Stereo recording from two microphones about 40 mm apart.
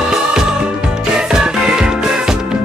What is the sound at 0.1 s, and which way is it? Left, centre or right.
Music, centre.